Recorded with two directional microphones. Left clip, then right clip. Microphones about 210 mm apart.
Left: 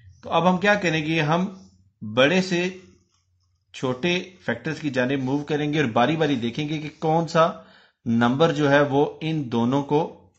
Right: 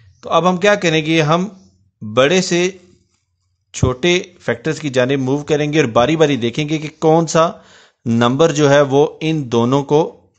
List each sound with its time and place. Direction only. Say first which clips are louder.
0.2 s speech: right 7 dB; 45° right (ahead or behind)
3.7 s speech: right 9 dB; 50° right (ahead or behind)